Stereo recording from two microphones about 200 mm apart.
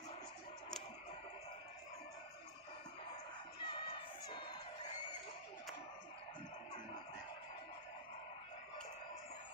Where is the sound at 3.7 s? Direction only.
25° left (ahead or behind).